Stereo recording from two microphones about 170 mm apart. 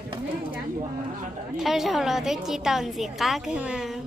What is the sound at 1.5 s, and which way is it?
A woman's voice, centre (ahead or behind).